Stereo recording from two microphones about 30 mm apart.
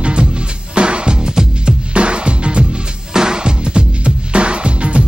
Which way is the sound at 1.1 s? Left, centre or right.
Right.